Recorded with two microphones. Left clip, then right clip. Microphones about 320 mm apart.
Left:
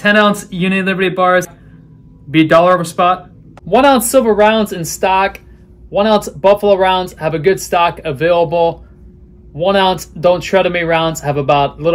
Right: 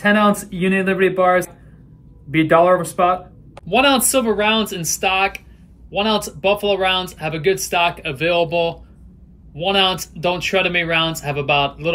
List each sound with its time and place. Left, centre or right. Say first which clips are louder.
0.0 s speech: left 5 dB; centre
3.6 s speech: left 5 dB; centre